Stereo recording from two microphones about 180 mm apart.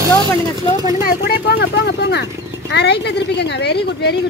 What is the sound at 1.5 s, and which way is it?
Speech, 65° left (ahead or behind).